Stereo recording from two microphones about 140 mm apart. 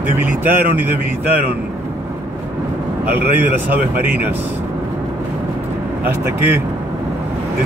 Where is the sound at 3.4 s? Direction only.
15° right (ahead or behind).